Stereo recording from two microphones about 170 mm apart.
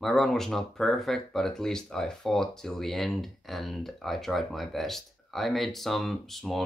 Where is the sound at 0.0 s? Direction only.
Centre (ahead or behind).